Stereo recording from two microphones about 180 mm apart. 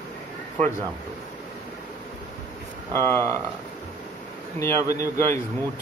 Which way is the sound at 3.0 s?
15° left (ahead or behind).